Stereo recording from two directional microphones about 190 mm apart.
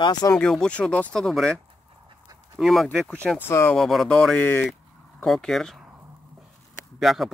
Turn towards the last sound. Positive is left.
turn(degrees=0)  # may be behind; listen again after turning